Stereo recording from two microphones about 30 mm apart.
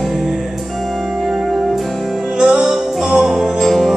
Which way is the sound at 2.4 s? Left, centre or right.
Centre.